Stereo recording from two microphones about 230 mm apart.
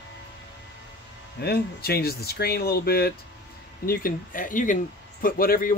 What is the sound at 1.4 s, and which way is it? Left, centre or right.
Speech, left.